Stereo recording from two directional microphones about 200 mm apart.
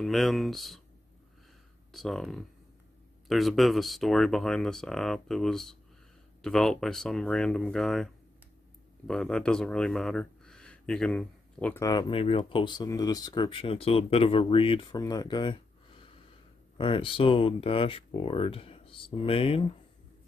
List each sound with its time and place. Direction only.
0.0 s speech: centre (ahead or behind)
1.9 s speech: centre (ahead or behind); by 19.6 s 30° left (ahead or behind)